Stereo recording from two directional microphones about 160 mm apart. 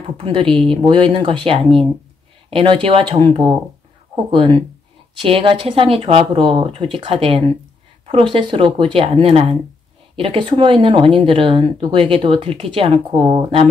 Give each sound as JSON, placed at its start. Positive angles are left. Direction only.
{"t": 0.2, "sound": "speech", "side_deg": -30}